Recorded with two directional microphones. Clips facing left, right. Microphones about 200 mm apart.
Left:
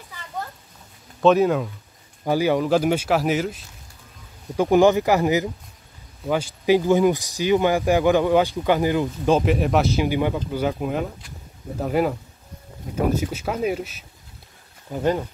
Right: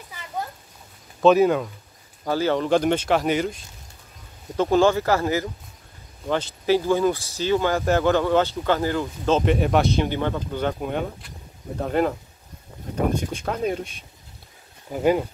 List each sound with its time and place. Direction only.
1.2 s speech: centre (ahead or behind)
2.2 s speech: 15° left (ahead or behind)
4.6 s speech: 15° left (ahead or behind)
9.4 s speech: centre (ahead or behind)
14.9 s speech: 10° right (ahead or behind)